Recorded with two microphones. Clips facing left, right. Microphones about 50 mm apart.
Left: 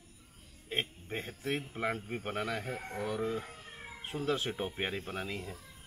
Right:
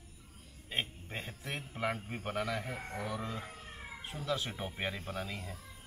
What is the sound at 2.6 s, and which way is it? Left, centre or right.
Speech, centre.